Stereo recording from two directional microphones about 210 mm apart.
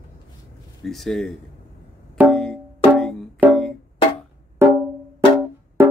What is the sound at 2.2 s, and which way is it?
Music, centre (ahead or behind).